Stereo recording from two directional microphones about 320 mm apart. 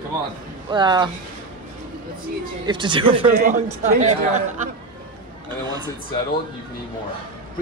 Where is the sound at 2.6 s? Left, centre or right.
Centre.